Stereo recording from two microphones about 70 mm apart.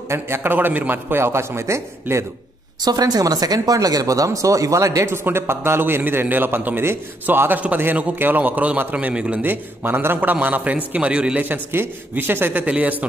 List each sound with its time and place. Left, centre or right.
0.1 s a man's voice: right
2.8 s speech: right
5.0 s a man's voice: right; by 9.4 s centre
9.4 s a man's voice: right
11.4 s a man's voice: right
12.6 s a man's voice: centre